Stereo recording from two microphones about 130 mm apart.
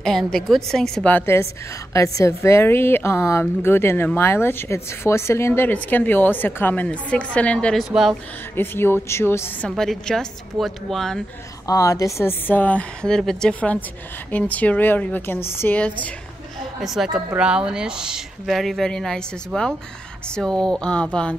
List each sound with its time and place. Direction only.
0.0 s a woman's voice: 5° left (ahead or behind)
8.5 s a woman's voice: 15° left (ahead or behind)
9.7 s speech: 5° left (ahead or behind)
11.6 s a woman's voice: 25° left (ahead or behind); by 16.1 s 10° left (ahead or behind)
16.8 s a woman's voice: centre (ahead or behind)